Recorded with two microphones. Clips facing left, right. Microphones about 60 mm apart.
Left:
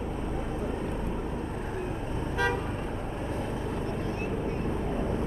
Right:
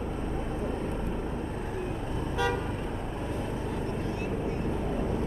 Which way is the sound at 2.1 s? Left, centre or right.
Left.